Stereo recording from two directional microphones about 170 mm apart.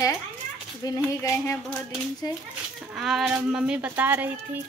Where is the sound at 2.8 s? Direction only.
Centre (ahead or behind).